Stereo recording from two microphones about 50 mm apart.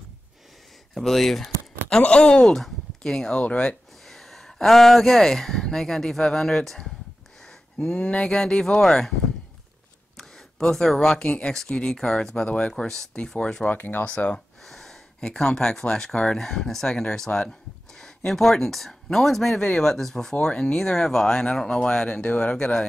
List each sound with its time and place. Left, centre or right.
0.9 s speech: centre
2.0 s speech: left
3.3 s speech: left
4.1 s speech: centre
10.1 s a sound: centre
11.2 s speech: left
13.7 s speech: left
14.1 s speech: left
14.6 s gasp: centre
15.1 s speech: centre